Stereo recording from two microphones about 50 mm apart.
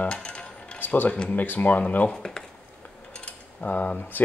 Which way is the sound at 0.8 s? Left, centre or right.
Left.